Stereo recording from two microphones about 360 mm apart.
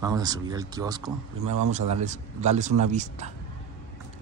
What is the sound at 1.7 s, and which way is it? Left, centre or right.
A man's voice, centre.